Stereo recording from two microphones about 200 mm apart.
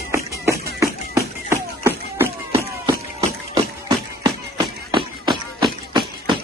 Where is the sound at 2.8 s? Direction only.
30° right (ahead or behind).